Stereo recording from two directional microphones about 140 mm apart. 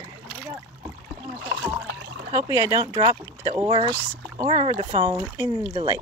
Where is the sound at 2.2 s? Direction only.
25° right (ahead or behind).